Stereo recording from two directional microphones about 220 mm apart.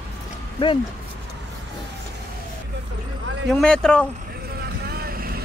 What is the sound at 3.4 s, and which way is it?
Speech, 5° left (ahead or behind).